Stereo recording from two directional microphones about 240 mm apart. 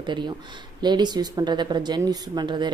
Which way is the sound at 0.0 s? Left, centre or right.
Centre.